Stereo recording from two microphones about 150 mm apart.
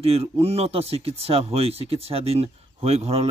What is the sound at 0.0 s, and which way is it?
Speech, 40° right (ahead or behind).